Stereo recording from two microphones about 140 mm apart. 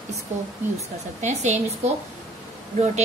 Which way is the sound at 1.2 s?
55° right (ahead or behind).